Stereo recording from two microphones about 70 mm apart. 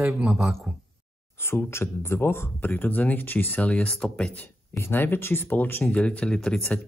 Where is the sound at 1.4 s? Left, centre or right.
Left.